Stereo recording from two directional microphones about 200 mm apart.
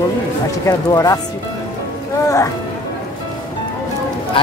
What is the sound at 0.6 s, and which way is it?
Speech, 15° left (ahead or behind).